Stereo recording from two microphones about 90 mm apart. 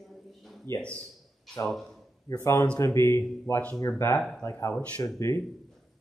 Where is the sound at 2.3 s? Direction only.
30° left (ahead or behind).